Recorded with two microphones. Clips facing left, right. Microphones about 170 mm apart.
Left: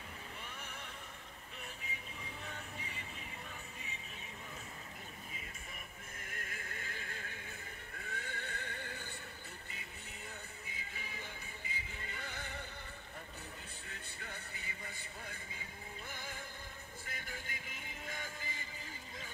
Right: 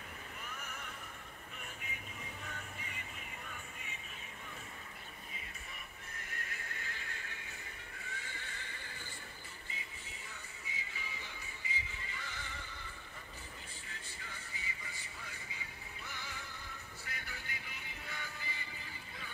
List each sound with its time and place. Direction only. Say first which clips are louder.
0.6 s neigh: right 1 dB; 30° left (ahead or behind)
6.2 s music: left 1 dB; 50° left (ahead or behind)
8.0 s neigh: left 5 dB; 55° left (ahead or behind)
9.7 s music: even; 60° left (ahead or behind)